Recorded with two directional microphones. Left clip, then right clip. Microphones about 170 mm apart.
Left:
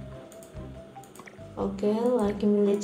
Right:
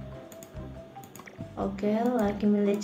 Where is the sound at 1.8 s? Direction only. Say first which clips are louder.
Left 2 dB; 20° left (ahead or behind).